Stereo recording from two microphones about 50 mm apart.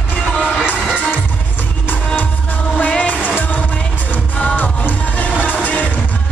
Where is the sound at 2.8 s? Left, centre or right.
Left.